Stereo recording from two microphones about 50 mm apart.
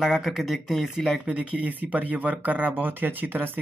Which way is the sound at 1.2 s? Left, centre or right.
Right.